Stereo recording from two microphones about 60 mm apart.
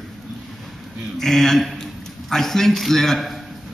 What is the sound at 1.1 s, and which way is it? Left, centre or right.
A man's voice, centre.